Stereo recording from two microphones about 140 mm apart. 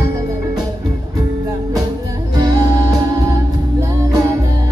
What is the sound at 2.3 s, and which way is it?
Music, 30° right (ahead or behind).